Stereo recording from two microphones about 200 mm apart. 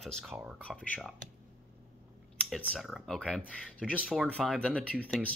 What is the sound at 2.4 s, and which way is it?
Speech, centre (ahead or behind).